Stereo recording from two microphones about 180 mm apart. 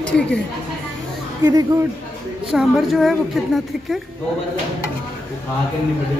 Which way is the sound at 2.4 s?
Centre (ahead or behind).